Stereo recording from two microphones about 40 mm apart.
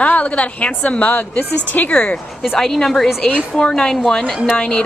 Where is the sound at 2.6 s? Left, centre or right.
Centre.